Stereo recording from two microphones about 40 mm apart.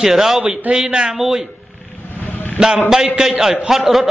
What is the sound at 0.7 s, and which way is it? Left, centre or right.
Speech, right.